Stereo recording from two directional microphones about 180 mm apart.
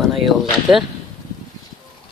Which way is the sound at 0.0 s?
Centre (ahead or behind).